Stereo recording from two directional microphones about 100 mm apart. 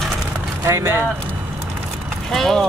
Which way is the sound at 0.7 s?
25° right (ahead or behind).